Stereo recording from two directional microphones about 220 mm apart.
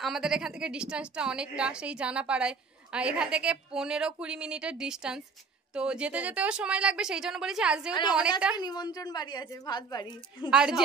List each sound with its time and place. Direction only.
0.0 s a woman's voice: centre (ahead or behind)
8.5 s a woman's voice: 20° left (ahead or behind)
10.5 s a woman's voice: 5° right (ahead or behind)